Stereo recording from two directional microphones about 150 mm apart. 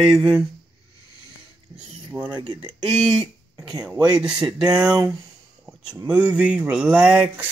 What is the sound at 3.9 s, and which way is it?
Speech, 25° right (ahead or behind).